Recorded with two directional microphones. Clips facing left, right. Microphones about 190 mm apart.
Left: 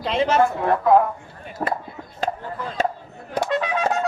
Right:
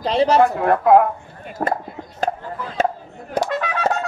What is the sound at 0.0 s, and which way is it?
Speech, 35° right (ahead or behind).